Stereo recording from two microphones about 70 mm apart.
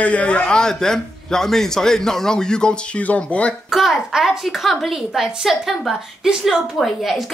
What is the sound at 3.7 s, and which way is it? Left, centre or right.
A woman's voice, centre.